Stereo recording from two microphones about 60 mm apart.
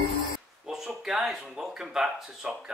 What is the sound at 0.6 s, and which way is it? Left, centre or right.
Speech, centre.